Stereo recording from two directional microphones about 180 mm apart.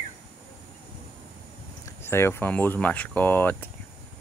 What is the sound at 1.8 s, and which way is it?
Speech, 15° left (ahead or behind).